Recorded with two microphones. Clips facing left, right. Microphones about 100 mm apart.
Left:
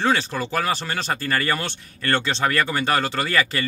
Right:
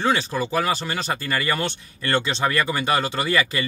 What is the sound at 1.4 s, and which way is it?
Speech, 15° right (ahead or behind).